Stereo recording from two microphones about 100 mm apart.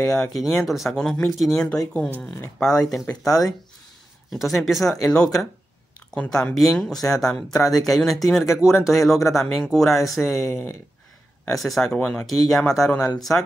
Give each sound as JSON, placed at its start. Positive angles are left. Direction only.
{"t": 0.1, "sound": "speech", "side_deg": 5}
{"t": 3.1, "sound": "speech", "side_deg": 5}